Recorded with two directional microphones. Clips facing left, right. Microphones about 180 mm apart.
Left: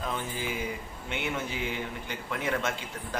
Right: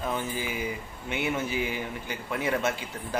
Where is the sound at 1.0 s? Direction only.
5° right (ahead or behind).